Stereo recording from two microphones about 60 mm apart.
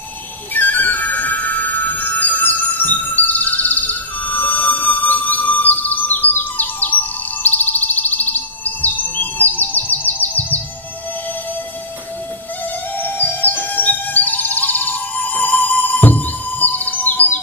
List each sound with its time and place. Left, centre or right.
0.6 s music: left
12.9 s music: left